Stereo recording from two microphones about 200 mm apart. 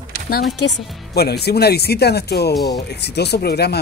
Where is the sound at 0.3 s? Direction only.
50° left (ahead or behind).